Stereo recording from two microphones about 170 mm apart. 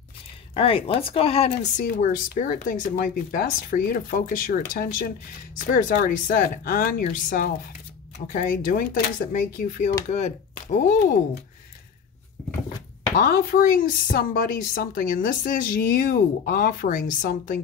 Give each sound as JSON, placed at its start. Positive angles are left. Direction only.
{"t": 0.6, "sound": "speech", "side_deg": 35}
{"t": 1.8, "sound": "speech", "side_deg": 50}
{"t": 13.2, "sound": "speech", "side_deg": 55}